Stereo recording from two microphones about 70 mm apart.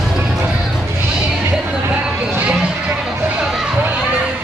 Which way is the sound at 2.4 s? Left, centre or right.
Centre.